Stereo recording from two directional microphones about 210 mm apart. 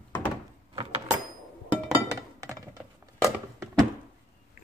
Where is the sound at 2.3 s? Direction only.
15° right (ahead or behind).